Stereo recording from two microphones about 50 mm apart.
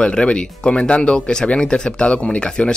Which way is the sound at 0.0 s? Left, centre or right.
Centre.